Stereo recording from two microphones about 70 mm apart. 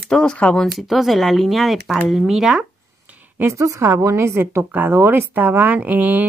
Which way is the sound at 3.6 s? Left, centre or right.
Right.